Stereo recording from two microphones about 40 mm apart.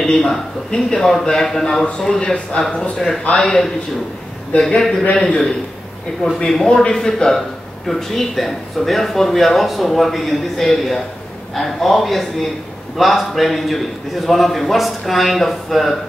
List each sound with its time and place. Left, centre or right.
0.0 s a man's voice: centre
2.6 s a man's voice: left
3.0 s a man's voice: centre
3.3 s a man's voice: centre
7.3 s a man's voice: centre